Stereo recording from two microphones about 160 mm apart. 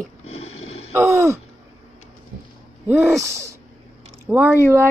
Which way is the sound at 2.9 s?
15° right (ahead or behind).